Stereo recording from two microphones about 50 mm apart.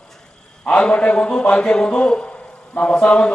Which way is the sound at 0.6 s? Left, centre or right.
Left.